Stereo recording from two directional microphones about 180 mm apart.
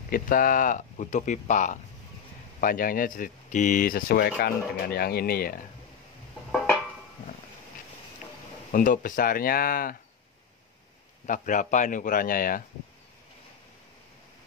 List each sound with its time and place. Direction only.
0.1 s speech: 50° left (ahead or behind)
8.7 s speech: 50° left (ahead or behind)
11.2 s speech: 45° left (ahead or behind)